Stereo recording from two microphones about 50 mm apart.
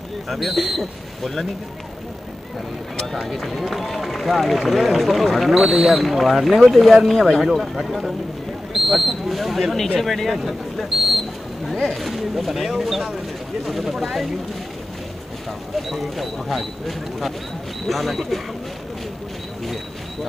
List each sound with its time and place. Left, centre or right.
0.3 s speech: centre
3.1 s speech: centre
7.4 s speech: centre
10.8 s a sound: centre
11.7 s speech: centre
15.9 s speech: centre